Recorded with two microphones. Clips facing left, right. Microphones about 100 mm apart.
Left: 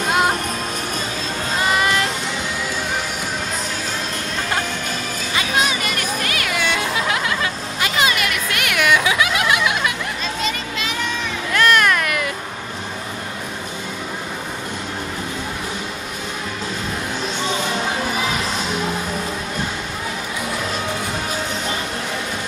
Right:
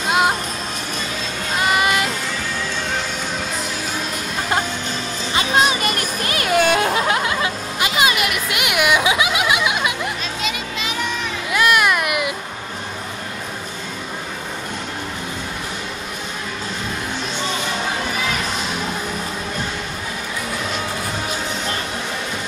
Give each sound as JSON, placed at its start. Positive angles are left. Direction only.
{"t": 1.7, "sound": "music", "side_deg": -10}
{"t": 5.3, "sound": "music", "side_deg": -30}
{"t": 7.1, "sound": "a sound", "side_deg": -25}
{"t": 11.5, "sound": "baby cry", "side_deg": -10}